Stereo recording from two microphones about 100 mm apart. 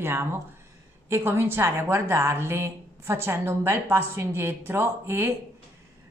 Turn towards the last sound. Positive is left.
turn(degrees=-25)  # may be behind; listen again after turning